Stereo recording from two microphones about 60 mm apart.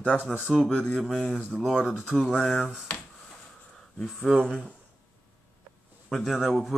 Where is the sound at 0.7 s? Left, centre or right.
Centre.